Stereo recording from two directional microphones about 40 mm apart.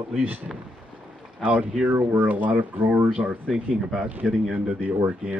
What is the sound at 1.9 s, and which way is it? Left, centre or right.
Speech, right.